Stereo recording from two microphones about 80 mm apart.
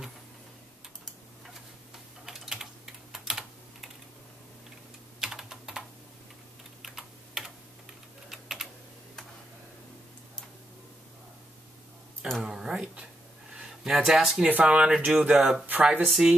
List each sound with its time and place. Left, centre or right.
2.2 s typing: centre
5.2 s typing: centre
12.4 s speech: centre
14.5 s speech: centre
15.6 s speech: right
16.1 s speech: centre